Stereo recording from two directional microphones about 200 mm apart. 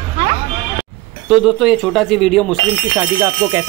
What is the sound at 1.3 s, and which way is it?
Speech, centre (ahead or behind).